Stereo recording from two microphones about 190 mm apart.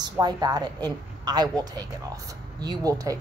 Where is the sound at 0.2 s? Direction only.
20° right (ahead or behind).